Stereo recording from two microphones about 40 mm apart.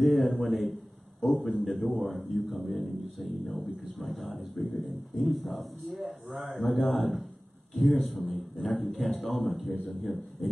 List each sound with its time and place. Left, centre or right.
0.0 s a sound: centre
1.2 s a man's voice: centre
1.6 s speech: centre